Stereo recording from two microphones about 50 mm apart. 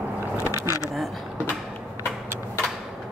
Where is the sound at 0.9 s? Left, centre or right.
Centre.